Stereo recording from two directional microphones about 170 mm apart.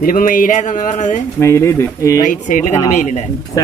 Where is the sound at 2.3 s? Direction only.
50° left (ahead or behind).